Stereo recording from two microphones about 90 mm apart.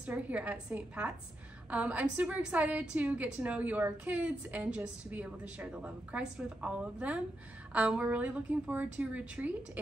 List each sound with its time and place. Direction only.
0.0 s a woman's voice: 15° right (ahead or behind)